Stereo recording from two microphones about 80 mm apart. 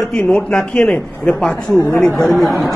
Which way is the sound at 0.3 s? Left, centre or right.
Centre.